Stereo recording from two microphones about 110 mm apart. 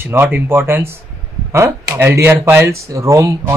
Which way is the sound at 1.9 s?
20° right (ahead or behind).